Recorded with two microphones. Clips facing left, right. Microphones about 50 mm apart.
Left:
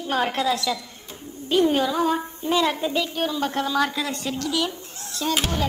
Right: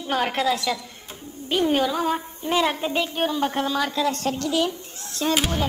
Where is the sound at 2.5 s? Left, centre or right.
Right.